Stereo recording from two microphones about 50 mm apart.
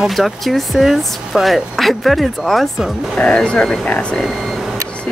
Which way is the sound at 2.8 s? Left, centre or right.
Centre.